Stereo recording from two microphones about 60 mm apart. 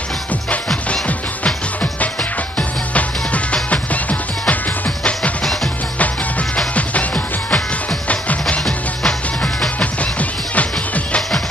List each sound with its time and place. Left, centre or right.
1.0 s music: left
5.4 s music: centre
6.7 s music: left
9.8 s music: left